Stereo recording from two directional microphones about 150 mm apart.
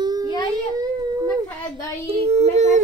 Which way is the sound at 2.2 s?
45° right (ahead or behind).